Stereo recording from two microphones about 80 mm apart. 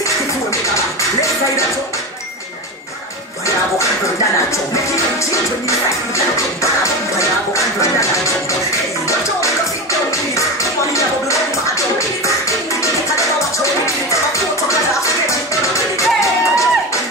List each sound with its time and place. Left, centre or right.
4.9 s music: left
10.3 s music: left
12.4 s music: left